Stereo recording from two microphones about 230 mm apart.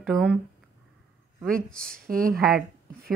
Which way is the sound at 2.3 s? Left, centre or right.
Centre.